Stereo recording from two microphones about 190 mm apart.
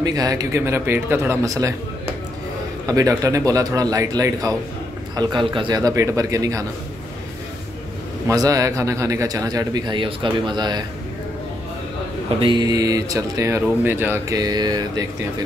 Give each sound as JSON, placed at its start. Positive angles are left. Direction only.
{"t": 0.0, "sound": "speech", "side_deg": -20}
{"t": 2.9, "sound": "speech", "side_deg": -20}
{"t": 8.3, "sound": "speech", "side_deg": -15}
{"t": 12.4, "sound": "speech", "side_deg": -25}